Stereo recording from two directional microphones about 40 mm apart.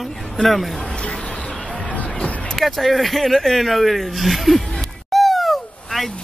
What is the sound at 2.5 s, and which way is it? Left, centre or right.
Speech, centre.